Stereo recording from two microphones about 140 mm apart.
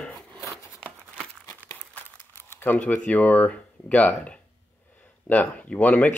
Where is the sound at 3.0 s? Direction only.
10° left (ahead or behind).